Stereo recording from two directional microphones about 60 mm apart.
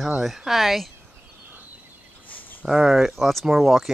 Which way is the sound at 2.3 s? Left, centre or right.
Left.